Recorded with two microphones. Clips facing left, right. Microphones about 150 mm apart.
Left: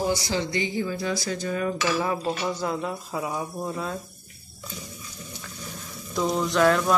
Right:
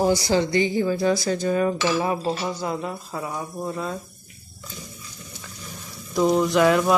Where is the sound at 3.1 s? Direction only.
5° left (ahead or behind).